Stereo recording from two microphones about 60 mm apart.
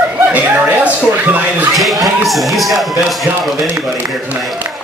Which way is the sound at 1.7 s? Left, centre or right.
Centre.